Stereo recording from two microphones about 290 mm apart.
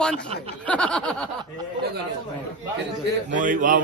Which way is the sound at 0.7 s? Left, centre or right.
Centre.